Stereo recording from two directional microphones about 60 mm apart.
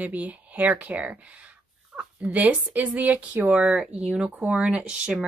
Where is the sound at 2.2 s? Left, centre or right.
Right.